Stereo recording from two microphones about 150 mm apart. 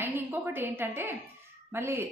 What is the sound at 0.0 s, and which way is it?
A woman's voice, 15° right (ahead or behind).